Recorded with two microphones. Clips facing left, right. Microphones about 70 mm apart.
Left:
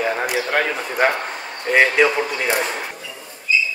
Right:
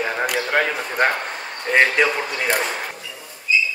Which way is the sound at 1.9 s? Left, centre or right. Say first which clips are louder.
Left 3 dB; centre.